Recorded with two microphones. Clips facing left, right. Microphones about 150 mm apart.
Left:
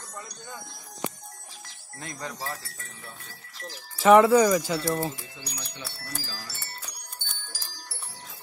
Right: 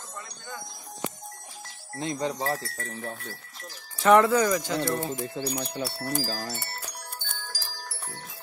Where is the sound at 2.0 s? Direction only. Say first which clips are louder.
Right 8 dB; 25° right (ahead or behind).